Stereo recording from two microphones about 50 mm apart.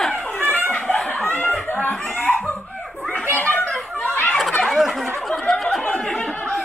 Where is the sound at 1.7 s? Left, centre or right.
Left.